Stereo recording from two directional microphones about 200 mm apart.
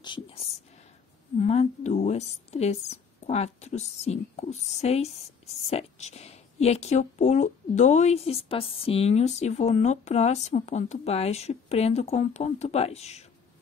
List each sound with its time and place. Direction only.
0.0 s a woman's voice: 25° left (ahead or behind)